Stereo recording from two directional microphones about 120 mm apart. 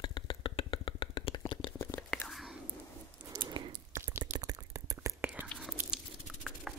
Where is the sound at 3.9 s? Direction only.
20° right (ahead or behind).